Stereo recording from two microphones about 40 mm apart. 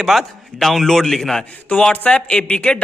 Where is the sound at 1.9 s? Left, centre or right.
Left.